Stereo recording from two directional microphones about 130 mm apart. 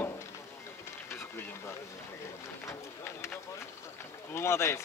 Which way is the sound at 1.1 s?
20° left (ahead or behind).